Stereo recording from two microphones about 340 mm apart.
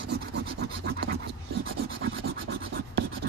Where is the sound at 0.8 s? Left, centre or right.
Right.